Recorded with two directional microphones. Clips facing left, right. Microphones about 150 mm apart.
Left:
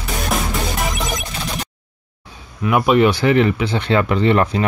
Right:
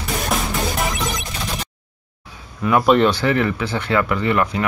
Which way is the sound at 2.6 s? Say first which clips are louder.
Left 1 dB; 5° left (ahead or behind).